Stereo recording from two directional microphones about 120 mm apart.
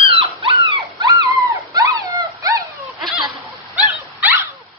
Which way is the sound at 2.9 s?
Centre (ahead or behind).